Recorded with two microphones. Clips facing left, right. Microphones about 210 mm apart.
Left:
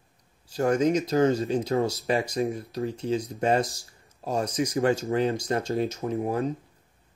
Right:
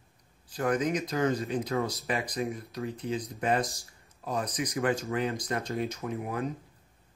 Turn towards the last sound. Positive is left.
turn(degrees=30)  # may be behind; listen again after turning